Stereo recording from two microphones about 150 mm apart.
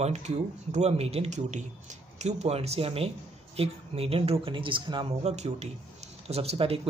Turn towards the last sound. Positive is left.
turn(degrees=-40)  # may be behind; listen again after turning